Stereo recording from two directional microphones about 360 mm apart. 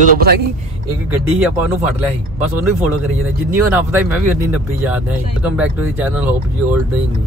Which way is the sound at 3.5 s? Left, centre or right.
Centre.